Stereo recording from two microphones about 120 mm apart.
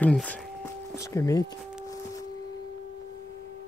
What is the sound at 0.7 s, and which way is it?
Speech, 25° left (ahead or behind).